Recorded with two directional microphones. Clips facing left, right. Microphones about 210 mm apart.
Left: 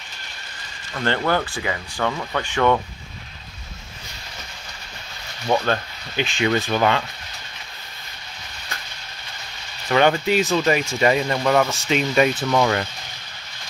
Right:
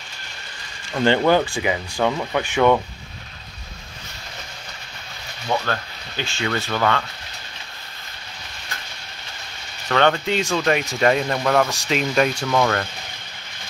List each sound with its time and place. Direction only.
1.0 s speech: 15° right (ahead or behind)
5.7 s speech: 15° left (ahead or behind)
9.8 s speech: 10° left (ahead or behind)